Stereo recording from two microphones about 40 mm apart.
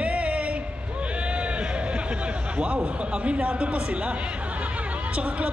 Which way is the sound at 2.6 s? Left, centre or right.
Right.